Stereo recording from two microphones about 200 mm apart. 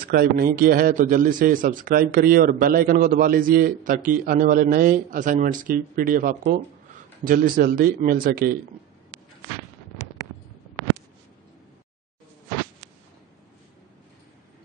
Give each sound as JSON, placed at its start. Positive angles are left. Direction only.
{"t": 0.0, "sound": "a man's voice", "side_deg": -50}